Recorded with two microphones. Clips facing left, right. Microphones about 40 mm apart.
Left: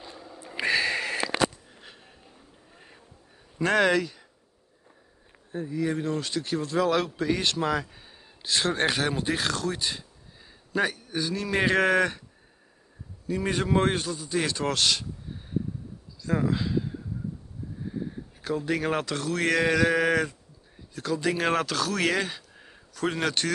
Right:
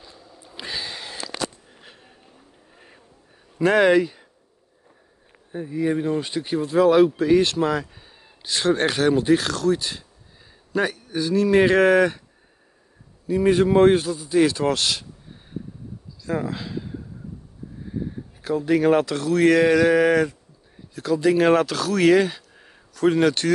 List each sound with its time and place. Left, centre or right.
0.4 s a sound: left
1.7 s a sound: centre
3.5 s speech: centre
5.5 s speech: centre
13.3 s speech: centre
16.2 s speech: centre
18.4 s speech: centre